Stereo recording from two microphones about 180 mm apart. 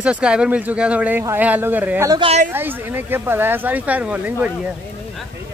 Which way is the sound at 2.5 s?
10° right (ahead or behind).